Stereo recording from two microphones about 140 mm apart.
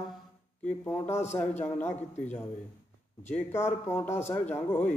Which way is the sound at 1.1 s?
55° left (ahead or behind).